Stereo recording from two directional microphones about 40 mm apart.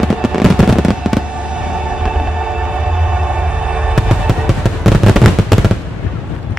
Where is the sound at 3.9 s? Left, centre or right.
Centre.